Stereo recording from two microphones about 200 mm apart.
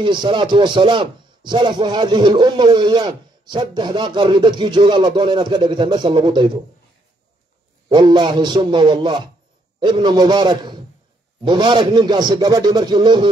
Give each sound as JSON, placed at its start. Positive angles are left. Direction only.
{"t": 0.0, "sound": "speech", "side_deg": -25}
{"t": 7.9, "sound": "speech", "side_deg": -25}